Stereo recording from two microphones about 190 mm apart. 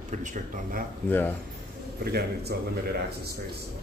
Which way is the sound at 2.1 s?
55° right (ahead or behind).